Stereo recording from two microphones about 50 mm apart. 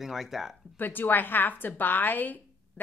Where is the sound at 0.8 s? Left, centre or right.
Left.